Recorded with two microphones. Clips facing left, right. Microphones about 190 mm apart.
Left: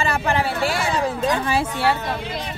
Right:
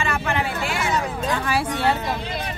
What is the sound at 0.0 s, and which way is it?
Speech, 35° left (ahead or behind).